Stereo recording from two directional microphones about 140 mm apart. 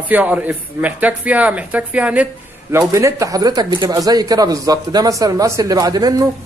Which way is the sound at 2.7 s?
20° right (ahead or behind).